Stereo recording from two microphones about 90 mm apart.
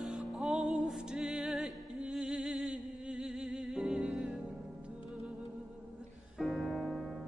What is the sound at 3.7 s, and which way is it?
Music, 5° right (ahead or behind).